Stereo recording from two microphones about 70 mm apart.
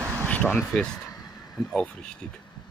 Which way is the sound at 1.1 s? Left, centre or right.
Left.